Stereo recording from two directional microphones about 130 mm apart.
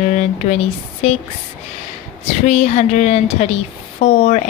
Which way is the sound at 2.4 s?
55° left (ahead or behind).